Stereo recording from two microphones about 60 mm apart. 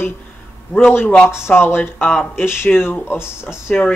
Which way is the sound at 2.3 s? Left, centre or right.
Left.